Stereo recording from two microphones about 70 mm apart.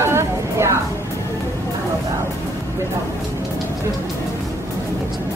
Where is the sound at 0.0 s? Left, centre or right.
Right.